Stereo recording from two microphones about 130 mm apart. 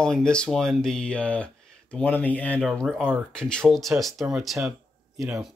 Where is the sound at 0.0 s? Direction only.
5° left (ahead or behind).